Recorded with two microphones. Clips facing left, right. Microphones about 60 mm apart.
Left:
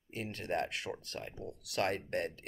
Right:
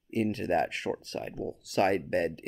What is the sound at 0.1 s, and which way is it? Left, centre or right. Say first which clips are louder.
Speech: right 9 dB; right.